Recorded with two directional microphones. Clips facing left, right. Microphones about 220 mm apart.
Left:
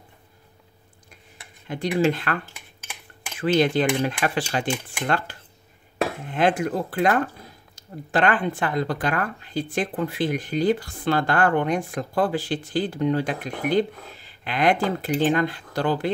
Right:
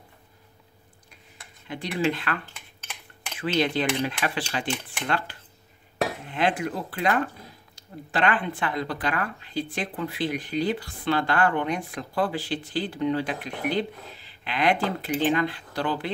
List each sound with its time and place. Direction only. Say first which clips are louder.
1.7 s speech: left 5 dB; 45° left (ahead or behind)
2.5 s cutlery: left 1 dB; 10° left (ahead or behind)
3.3 s speech: left 5 dB; 50° left (ahead or behind)